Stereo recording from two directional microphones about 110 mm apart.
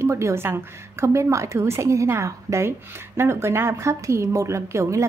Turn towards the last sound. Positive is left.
turn(degrees=-25)  # may be behind; listen again after turning